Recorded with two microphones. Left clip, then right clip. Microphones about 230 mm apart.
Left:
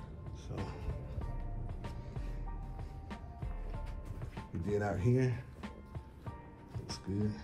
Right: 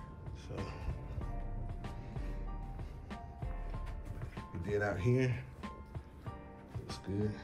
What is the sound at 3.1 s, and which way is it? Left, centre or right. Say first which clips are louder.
Music: right 3 dB; centre.